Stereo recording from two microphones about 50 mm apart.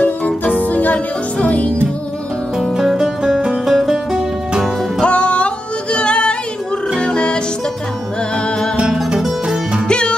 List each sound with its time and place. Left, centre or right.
0.0 s music: left
2.8 s music: centre
5.0 s music: left
8.8 s music: centre
9.8 s music: centre